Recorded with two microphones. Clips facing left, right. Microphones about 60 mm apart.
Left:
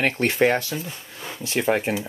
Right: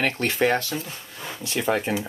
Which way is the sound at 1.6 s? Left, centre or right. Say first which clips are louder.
Left 2 dB; left.